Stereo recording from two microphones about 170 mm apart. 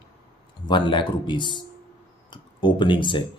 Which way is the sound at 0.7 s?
25° left (ahead or behind).